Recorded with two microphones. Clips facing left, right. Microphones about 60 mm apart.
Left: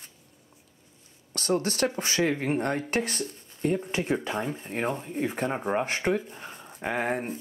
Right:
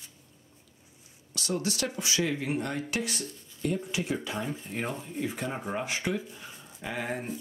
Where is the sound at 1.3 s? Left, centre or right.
Left.